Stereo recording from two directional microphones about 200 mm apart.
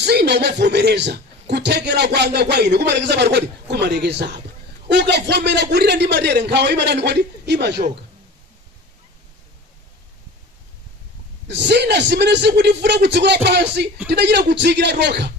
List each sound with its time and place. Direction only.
0.0 s a man's voice: 55° right (ahead or behind)
11.4 s a man's voice: 60° right (ahead or behind)